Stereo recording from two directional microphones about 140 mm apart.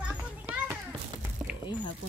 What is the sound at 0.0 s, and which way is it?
Children playing, 10° right (ahead or behind).